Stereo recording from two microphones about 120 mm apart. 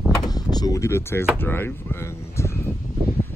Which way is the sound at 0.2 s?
35° left (ahead or behind).